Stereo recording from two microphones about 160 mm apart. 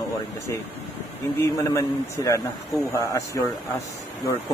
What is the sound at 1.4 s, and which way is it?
A man's voice, 15° left (ahead or behind).